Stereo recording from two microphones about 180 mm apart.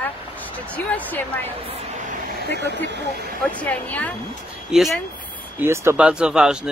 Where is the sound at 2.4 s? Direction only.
70° left (ahead or behind).